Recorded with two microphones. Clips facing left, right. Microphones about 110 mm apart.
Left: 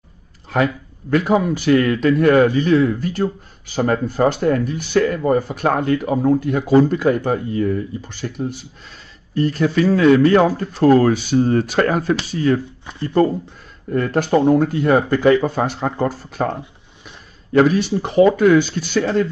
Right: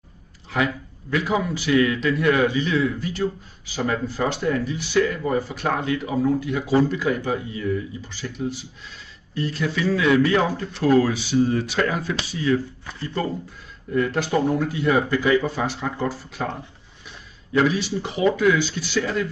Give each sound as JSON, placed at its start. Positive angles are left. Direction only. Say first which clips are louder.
{"t": 1.1, "sound": "a man's voice", "louder": "left 6 dB", "side_deg": 50}